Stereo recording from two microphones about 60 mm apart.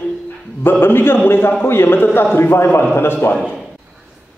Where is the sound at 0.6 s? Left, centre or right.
Left.